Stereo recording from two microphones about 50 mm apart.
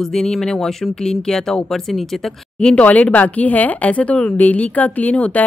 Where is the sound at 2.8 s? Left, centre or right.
Left.